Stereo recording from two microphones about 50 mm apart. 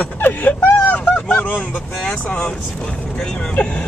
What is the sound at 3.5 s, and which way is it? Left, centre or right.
Speech, left.